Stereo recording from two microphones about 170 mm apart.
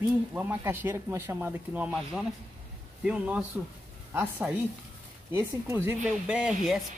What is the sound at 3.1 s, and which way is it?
Speech, 5° right (ahead or behind).